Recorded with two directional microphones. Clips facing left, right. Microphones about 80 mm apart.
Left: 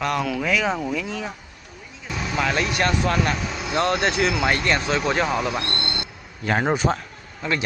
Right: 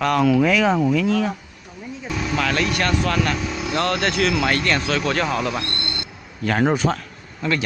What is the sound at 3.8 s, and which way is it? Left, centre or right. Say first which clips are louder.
A man's voice: even; centre.